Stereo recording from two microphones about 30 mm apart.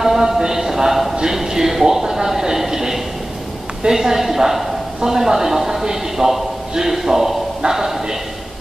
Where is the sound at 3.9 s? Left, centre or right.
Centre.